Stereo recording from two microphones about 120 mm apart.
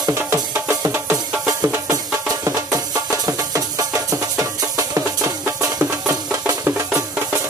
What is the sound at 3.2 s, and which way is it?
Music, 30° right (ahead or behind).